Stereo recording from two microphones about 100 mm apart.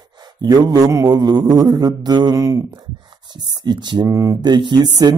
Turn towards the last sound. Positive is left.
turn(degrees=-45)  # may be behind; listen again after turning